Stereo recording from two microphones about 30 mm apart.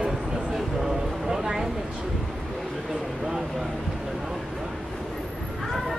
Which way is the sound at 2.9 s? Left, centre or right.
Centre.